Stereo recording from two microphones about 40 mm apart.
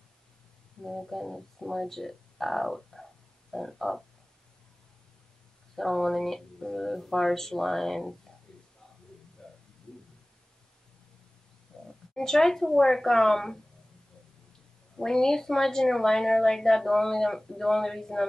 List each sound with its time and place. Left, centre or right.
0.8 s speech: centre
5.8 s a woman's voice: centre
9.4 s a sound: centre
11.7 s oink: centre
12.1 s a woman's voice: centre
15.0 s a woman's voice: centre